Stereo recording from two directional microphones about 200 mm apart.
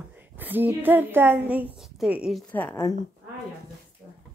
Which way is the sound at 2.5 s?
10° left (ahead or behind).